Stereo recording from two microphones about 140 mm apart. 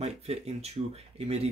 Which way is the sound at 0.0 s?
50° right (ahead or behind).